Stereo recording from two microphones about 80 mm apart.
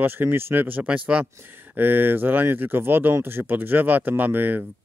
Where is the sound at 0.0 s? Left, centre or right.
Right.